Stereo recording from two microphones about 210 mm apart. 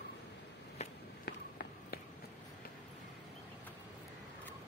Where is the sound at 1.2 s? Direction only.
45° left (ahead or behind).